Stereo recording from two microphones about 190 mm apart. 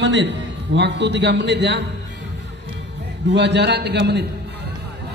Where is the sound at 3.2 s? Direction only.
65° right (ahead or behind).